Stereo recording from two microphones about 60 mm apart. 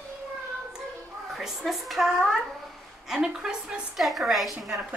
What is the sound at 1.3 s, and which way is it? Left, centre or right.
A woman's voice, centre.